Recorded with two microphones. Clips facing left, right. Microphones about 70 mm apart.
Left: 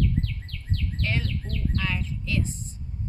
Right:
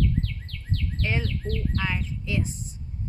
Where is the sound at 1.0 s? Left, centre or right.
Centre.